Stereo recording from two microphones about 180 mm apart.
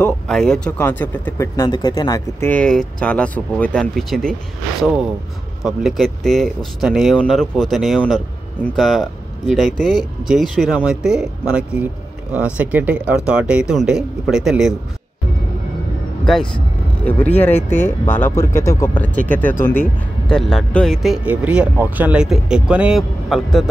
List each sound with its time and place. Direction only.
0.0 s speech: 5° left (ahead or behind); by 2.5 s 20° left (ahead or behind)
2.5 s speech: 5° left (ahead or behind)
5.6 s speech: centre (ahead or behind)
17.0 s speech: 10° left (ahead or behind)